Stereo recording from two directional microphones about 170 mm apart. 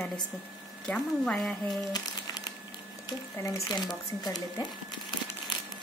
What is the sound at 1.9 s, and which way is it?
Crumpling, 25° left (ahead or behind).